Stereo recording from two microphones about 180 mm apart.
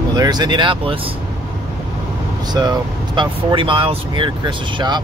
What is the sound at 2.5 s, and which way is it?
Speech, 25° right (ahead or behind).